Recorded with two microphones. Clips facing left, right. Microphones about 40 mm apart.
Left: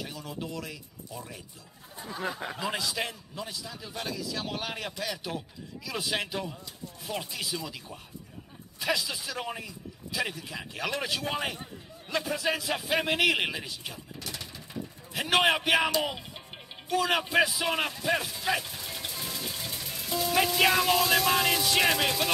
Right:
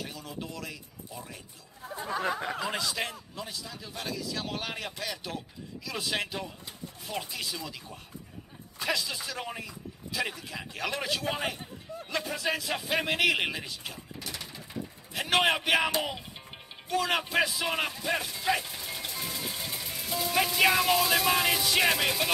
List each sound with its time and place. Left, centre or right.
0.0 s speech: centre
2.0 s a sound: right
2.6 s speech: centre